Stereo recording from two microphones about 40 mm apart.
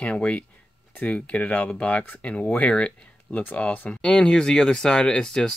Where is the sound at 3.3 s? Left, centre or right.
Left.